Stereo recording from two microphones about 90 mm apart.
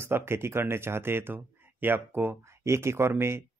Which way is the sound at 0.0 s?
30° right (ahead or behind).